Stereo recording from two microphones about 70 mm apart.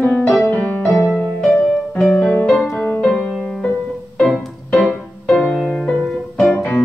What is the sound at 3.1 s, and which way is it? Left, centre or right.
Music, centre.